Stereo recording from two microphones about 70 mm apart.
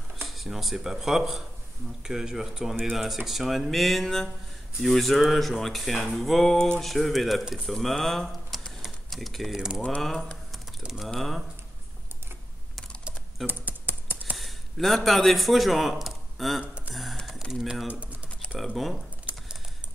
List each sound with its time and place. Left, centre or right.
0.3 s speech: centre
8.8 s typing: centre
9.8 s speech: centre
10.8 s speech: centre
13.5 s computer keyboard: right
14.3 s a man's voice: centre
16.9 s a sound: centre
17.5 s speech: centre
17.8 s speech: centre
18.4 s typing: centre
19.3 s a sound: right